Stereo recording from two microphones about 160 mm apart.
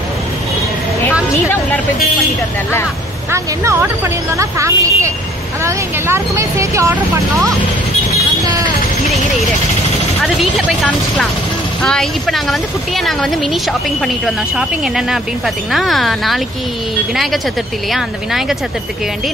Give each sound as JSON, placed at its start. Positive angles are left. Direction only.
{"t": 3.3, "sound": "speech", "side_deg": -15}
{"t": 10.2, "sound": "a woman's voice", "side_deg": 0}